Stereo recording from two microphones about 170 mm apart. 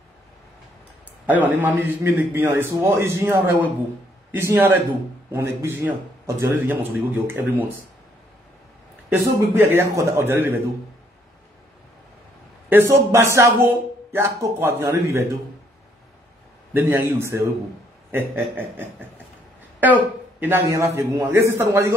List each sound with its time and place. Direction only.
1.2 s speech: 10° right (ahead or behind)
9.5 s speech: 15° right (ahead or behind)
12.6 s speech: 15° right (ahead or behind)
16.7 s speech: 15° right (ahead or behind)